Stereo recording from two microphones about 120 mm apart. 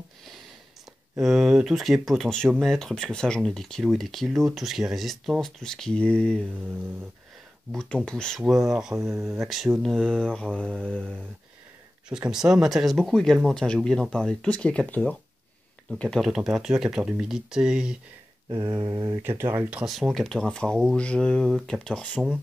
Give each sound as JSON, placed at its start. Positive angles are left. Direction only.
{"t": 1.2, "sound": "speech", "side_deg": -5}
{"t": 7.7, "sound": "speech", "side_deg": 5}
{"t": 8.4, "sound": "speech", "side_deg": -5}
{"t": 12.1, "sound": "speech", "side_deg": -5}
{"t": 18.5, "sound": "mantra", "side_deg": -40}
{"t": 19.5, "sound": "speech", "side_deg": -15}
{"t": 19.8, "sound": "speech", "side_deg": 0}